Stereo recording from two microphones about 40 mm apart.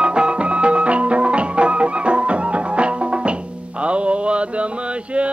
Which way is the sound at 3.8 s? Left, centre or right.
Right.